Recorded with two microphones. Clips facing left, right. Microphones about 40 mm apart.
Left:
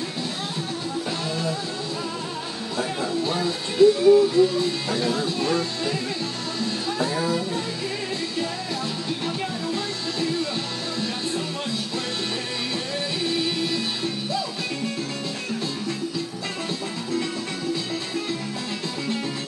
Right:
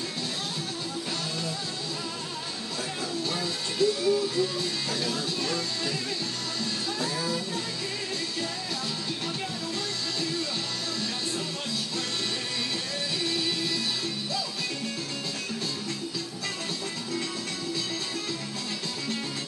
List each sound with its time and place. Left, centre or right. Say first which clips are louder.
2.8 s music: left 8 dB; left
13.2 s music: left 5 dB; centre